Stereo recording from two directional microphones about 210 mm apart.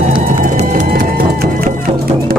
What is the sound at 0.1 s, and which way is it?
Music, 40° right (ahead or behind).